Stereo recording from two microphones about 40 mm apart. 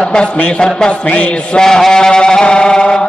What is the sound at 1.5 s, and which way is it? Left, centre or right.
Chant, centre.